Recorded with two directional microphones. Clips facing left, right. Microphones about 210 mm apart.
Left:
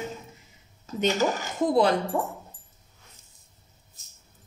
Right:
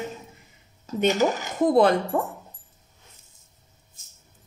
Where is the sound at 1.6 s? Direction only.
55° right (ahead or behind).